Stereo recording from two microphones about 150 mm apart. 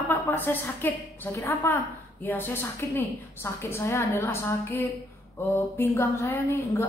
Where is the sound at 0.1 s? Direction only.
15° left (ahead or behind).